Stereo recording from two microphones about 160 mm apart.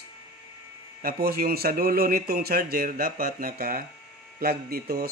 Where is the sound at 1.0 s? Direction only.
70° right (ahead or behind).